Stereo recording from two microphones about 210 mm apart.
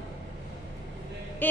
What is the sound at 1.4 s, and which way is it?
Speech, 10° left (ahead or behind).